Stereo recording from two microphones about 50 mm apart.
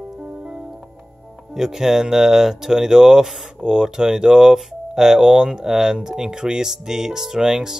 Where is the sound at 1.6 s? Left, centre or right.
Centre.